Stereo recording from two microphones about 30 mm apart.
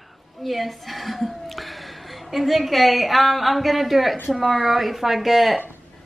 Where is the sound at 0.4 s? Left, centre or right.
Centre.